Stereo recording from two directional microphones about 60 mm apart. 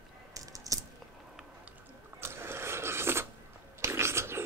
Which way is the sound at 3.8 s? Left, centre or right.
Right.